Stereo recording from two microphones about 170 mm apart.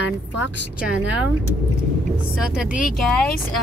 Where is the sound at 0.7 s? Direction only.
5° right (ahead or behind).